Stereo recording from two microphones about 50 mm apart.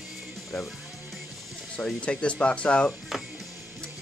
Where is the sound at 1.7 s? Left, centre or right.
Left.